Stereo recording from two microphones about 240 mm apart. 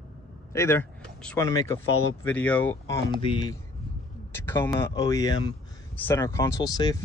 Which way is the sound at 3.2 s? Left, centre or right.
Left.